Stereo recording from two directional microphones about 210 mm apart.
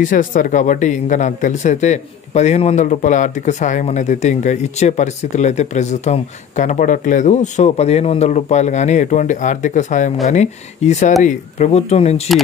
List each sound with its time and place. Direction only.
0.0 s speech: 40° left (ahead or behind)